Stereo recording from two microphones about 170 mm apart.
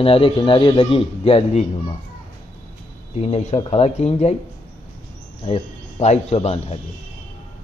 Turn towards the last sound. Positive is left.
turn(degrees=40)  # may be behind; listen again after turning